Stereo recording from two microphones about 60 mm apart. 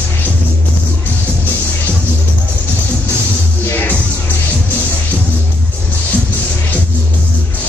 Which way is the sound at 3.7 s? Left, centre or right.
Left.